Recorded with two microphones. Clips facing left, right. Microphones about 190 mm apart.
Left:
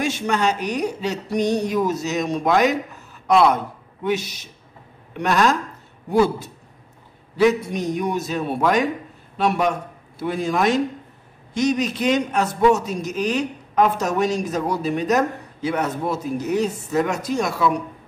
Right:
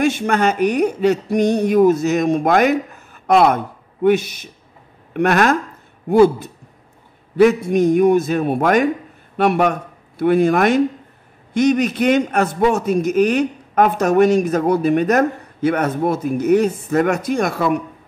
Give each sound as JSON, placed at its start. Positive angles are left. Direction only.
{"t": 0.0, "sound": "a man's voice", "side_deg": -55}